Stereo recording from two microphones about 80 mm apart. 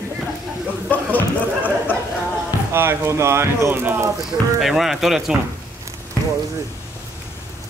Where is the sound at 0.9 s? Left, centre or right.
Left.